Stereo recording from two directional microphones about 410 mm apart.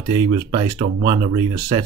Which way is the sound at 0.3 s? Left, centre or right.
Centre.